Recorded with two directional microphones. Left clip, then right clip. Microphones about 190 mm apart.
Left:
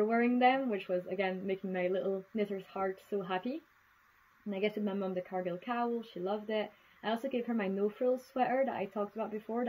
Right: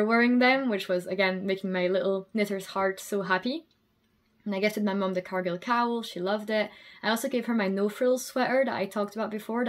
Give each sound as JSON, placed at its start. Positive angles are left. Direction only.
{"t": 0.0, "sound": "speech", "side_deg": 0}